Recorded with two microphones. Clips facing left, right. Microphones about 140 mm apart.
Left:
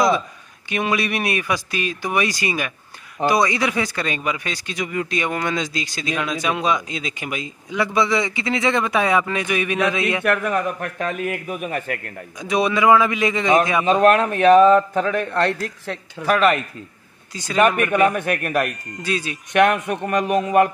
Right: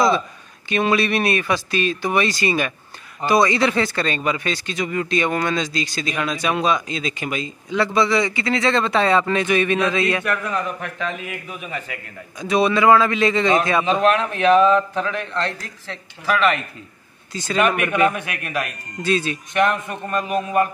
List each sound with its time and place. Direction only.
0.7 s speech: 15° left (ahead or behind)
10.2 s a man's voice: 60° left (ahead or behind)
12.4 s speech: 15° left (ahead or behind)
13.8 s a man's voice: 45° left (ahead or behind)
17.3 s speech: 10° left (ahead or behind)
17.6 s a man's voice: 40° left (ahead or behind)
19.0 s speech: 10° left (ahead or behind)
19.5 s a man's voice: 65° left (ahead or behind)